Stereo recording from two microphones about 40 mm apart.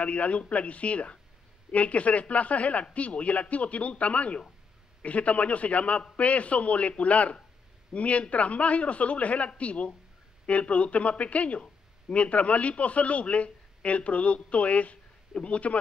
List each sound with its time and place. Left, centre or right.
0.0 s speech: left